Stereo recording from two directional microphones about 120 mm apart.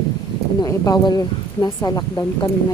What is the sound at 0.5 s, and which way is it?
Speech, 35° left (ahead or behind).